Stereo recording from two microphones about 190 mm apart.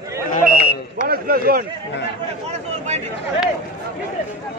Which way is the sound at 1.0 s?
50° right (ahead or behind).